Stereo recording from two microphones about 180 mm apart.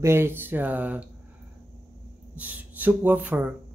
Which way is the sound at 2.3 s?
10° right (ahead or behind).